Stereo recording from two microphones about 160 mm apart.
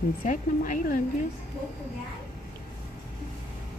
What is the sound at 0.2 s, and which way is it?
Speech, 55° left (ahead or behind).